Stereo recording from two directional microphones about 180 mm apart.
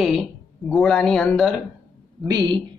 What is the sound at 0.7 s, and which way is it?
Speech, 5° left (ahead or behind).